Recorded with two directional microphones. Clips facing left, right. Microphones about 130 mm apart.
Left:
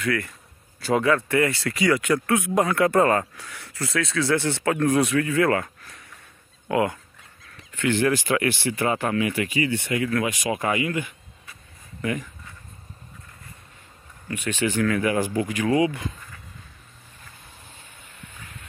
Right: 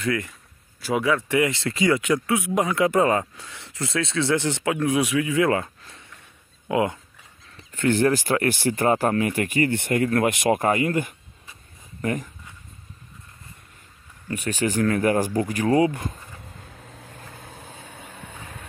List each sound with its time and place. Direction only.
0.0 s speech: 20° right (ahead or behind)
0.7 s speech: 5° right (ahead or behind)
4.7 s speech: 5° right (ahead or behind); by 7.0 s 20° right (ahead or behind)
7.5 s speech: 40° right (ahead or behind)
14.3 s speech: 40° right (ahead or behind)
17.5 s vehicle: 70° right (ahead or behind)